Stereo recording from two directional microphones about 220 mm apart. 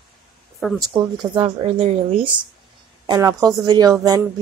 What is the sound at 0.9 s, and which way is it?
A woman's voice, 20° right (ahead or behind).